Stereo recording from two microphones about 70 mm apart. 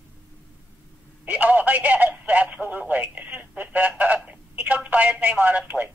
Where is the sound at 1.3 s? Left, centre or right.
Right.